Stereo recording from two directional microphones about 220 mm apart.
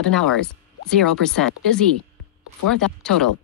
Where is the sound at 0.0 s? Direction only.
5° left (ahead or behind).